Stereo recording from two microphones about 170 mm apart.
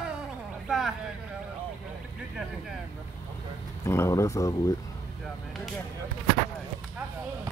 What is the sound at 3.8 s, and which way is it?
Speech, 15° left (ahead or behind).